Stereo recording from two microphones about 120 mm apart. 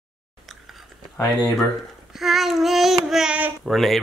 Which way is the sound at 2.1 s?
Centre (ahead or behind).